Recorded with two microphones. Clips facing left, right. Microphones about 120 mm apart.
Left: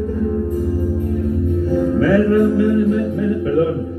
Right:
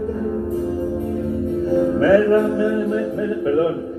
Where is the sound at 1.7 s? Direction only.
30° right (ahead or behind).